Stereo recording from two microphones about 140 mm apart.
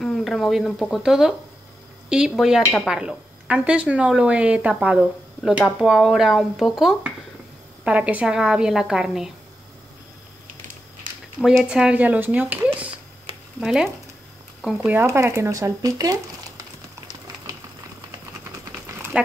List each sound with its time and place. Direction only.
0.0 s a woman's voice: centre (ahead or behind)
11.4 s speech: 5° right (ahead or behind); by 16.6 s 25° right (ahead or behind)
19.1 s speech: 5° right (ahead or behind)